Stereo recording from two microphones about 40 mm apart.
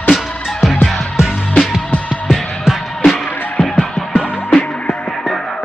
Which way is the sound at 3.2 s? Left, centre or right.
Left.